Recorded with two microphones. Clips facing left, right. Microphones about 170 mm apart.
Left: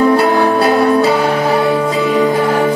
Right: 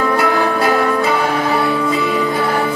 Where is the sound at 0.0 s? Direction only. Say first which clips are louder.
Left 5 dB; 30° left (ahead or behind).